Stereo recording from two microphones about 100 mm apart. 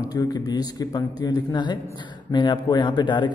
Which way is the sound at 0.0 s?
40° left (ahead or behind).